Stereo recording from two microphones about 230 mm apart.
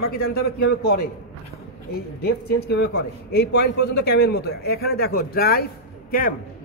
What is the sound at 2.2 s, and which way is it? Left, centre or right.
A man's voice, left.